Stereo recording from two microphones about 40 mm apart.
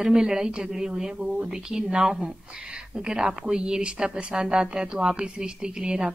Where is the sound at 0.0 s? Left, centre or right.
Centre.